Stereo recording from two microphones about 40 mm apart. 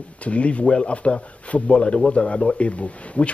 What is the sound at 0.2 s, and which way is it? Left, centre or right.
Speech, left.